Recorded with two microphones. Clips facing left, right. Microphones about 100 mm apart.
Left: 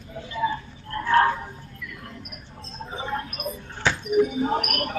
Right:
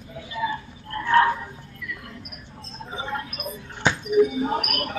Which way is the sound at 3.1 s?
40° left (ahead or behind).